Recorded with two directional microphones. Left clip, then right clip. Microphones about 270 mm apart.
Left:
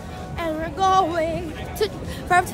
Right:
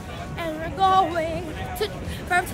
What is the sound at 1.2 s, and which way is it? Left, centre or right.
Speech, centre.